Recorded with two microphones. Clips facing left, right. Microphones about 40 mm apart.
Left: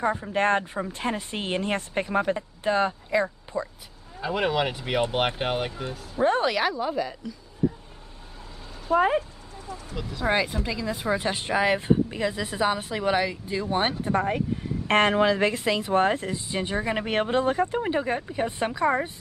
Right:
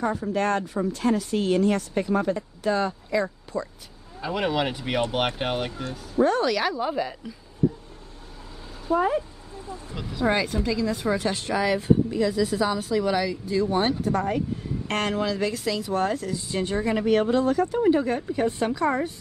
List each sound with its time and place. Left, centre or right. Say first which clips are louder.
0.0 s speech: left 1 dB; left
4.2 s speech: even; centre
5.9 s speech: right 2 dB; left
6.8 s a woman's voice: right 1 dB; centre
8.9 s speech: left 1 dB; left
9.9 s speech: right 1 dB; centre
10.2 s speech: right 2 dB; centre